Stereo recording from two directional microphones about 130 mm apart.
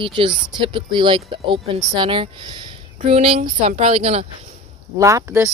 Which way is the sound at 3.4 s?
70° right (ahead or behind).